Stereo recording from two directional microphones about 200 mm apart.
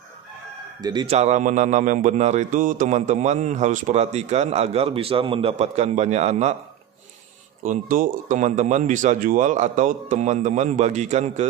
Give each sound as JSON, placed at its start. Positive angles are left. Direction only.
{"t": 0.7, "sound": "speech", "side_deg": -20}
{"t": 1.1, "sound": "a man's voice", "side_deg": -35}
{"t": 7.6, "sound": "a man's voice", "side_deg": -40}